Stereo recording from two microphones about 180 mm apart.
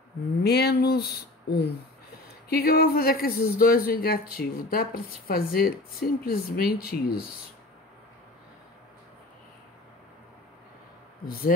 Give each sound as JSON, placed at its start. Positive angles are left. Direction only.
{"t": 0.4, "sound": "speech", "side_deg": 65}
{"t": 11.2, "sound": "speech", "side_deg": 55}